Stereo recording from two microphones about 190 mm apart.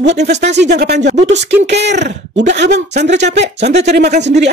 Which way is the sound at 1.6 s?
65° right (ahead or behind).